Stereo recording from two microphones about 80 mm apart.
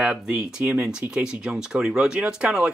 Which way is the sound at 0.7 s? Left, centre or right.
Centre.